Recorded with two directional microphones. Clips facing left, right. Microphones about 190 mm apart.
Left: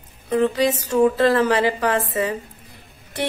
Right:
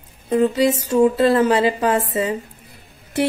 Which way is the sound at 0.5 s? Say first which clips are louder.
Right 2 dB; 25° right (ahead or behind).